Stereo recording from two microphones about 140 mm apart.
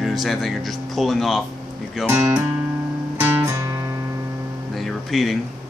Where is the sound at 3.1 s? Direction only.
15° right (ahead or behind).